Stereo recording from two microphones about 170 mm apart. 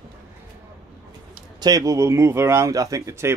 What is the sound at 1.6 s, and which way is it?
Speech, 20° right (ahead or behind).